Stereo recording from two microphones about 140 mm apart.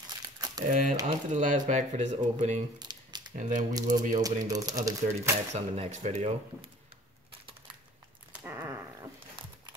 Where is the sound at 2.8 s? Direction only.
30° right (ahead or behind).